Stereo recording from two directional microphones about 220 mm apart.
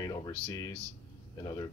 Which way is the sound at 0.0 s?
15° left (ahead or behind).